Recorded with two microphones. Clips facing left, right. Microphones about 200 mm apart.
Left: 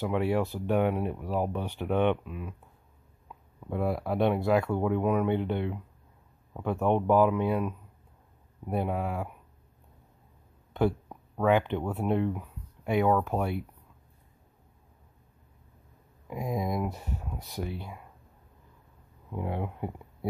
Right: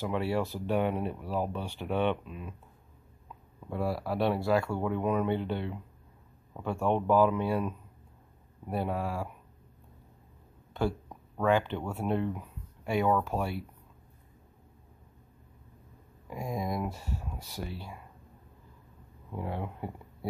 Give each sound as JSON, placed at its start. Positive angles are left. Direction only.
{"t": 0.0, "sound": "speech", "side_deg": 15}
{"t": 3.7, "sound": "speech", "side_deg": 20}
{"t": 10.7, "sound": "a sound", "side_deg": 20}
{"t": 11.1, "sound": "a sound", "side_deg": 5}
{"t": 11.5, "sound": "speech", "side_deg": 20}
{"t": 16.3, "sound": "speech", "side_deg": 20}
{"t": 19.3, "sound": "speech", "side_deg": 15}